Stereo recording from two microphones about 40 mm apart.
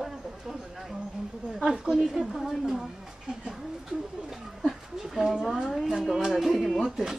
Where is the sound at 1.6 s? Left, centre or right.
Centre.